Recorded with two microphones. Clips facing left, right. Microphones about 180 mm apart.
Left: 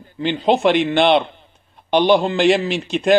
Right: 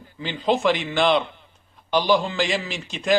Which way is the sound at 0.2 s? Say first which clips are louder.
Left 5 dB; 65° left (ahead or behind).